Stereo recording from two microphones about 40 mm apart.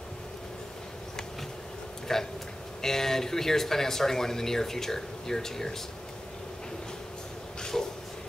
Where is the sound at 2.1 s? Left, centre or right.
Centre.